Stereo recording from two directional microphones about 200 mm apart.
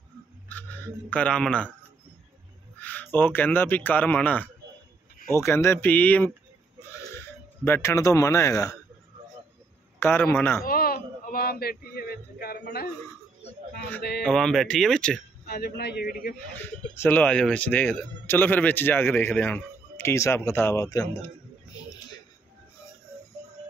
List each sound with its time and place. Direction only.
0.5 s speech: 10° left (ahead or behind)
2.8 s a man's voice: 10° left (ahead or behind)
9.9 s a man's voice: 10° left (ahead or behind)
10.6 s speech: 50° left (ahead or behind)
14.2 s speech: 5° left (ahead or behind)
15.4 s a man's voice: 50° left (ahead or behind)
17.0 s a man's voice: 5° left (ahead or behind)